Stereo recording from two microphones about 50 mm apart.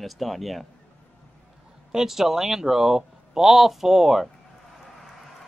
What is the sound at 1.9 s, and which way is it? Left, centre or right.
Speech, centre.